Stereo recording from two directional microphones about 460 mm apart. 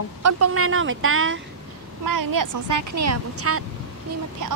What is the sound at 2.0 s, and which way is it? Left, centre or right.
Speech, right.